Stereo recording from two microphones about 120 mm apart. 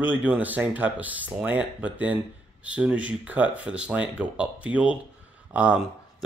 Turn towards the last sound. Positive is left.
turn(degrees=-15)  # may be behind; listen again after turning